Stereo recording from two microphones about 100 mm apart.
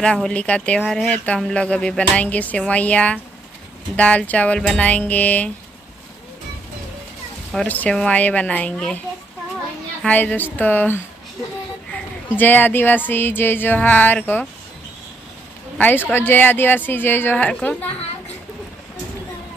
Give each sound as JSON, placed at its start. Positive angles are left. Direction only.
{"t": 0.0, "sound": "speech", "side_deg": 10}
{"t": 7.6, "sound": "speech", "side_deg": 15}
{"t": 10.0, "sound": "speech", "side_deg": 15}
{"t": 15.8, "sound": "speech", "side_deg": 20}